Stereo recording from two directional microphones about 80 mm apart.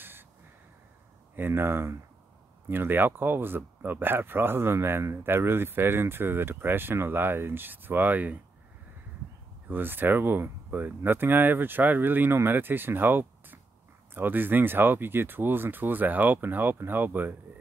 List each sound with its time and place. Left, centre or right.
1.3 s speech: right
9.7 s speech: right